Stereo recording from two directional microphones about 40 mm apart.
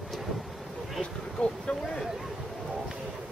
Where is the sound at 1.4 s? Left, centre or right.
Left.